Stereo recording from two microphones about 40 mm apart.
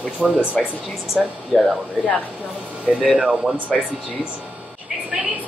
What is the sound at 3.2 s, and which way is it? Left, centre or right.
Speech, right.